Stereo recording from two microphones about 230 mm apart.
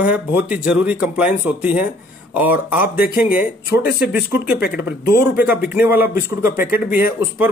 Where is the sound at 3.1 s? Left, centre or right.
Left.